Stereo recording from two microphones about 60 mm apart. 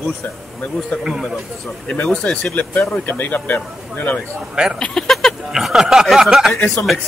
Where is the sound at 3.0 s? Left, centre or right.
Left.